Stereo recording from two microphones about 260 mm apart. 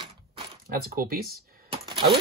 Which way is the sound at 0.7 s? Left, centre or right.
Right.